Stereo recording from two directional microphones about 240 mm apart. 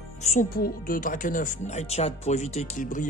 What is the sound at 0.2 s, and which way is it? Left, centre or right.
Speech, left.